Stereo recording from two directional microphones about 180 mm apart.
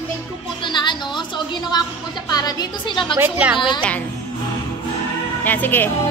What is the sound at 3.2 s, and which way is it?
Speech, 10° right (ahead or behind).